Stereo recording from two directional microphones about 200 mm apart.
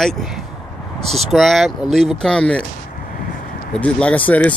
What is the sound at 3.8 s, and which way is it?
Speech, 5° left (ahead or behind).